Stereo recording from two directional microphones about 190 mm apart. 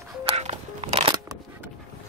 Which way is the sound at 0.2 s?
35° right (ahead or behind).